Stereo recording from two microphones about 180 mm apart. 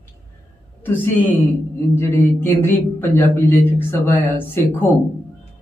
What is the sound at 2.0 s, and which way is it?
A man's voice, 10° left (ahead or behind).